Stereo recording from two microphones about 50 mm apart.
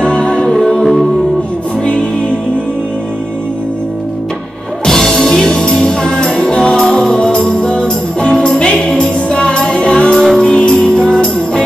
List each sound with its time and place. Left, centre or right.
0.0 s music: left
4.8 s music: centre
10.1 s music: centre